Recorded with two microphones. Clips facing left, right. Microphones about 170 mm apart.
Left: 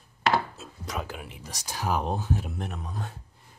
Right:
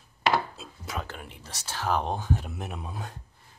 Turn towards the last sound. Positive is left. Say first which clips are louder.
# left 1 dB
turn(degrees=-5)  # may be behind; listen again after turning